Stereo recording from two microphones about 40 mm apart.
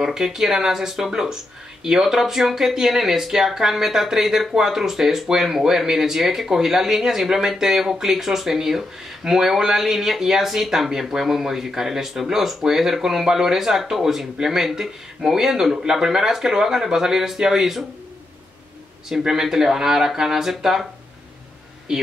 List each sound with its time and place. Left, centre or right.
0.0 s speech: centre
19.0 s speech: centre
21.9 s speech: centre